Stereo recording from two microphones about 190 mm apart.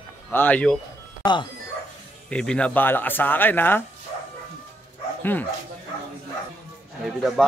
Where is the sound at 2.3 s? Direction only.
5° left (ahead or behind).